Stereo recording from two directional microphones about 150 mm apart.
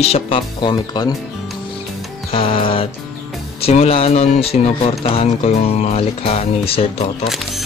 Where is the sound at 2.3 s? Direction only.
35° left (ahead or behind).